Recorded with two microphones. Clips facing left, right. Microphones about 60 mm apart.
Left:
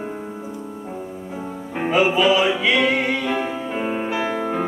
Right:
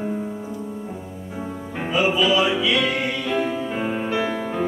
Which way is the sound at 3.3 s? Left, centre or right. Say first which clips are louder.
Even; centre.